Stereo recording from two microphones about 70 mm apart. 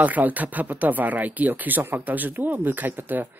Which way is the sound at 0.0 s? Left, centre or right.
Right.